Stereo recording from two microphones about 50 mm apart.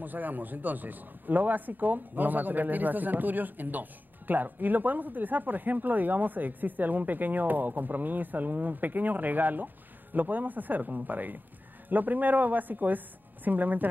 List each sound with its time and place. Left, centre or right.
0.0 s speech: right